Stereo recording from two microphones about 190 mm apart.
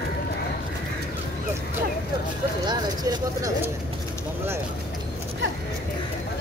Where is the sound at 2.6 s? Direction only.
20° right (ahead or behind).